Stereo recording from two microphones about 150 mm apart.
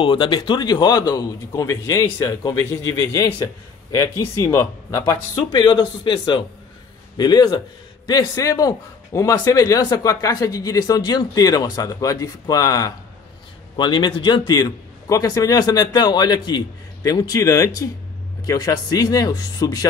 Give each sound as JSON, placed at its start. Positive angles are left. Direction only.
{"t": 0.0, "sound": "speech", "side_deg": 35}